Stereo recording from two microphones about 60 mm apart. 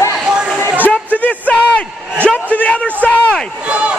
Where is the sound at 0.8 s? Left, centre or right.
Left.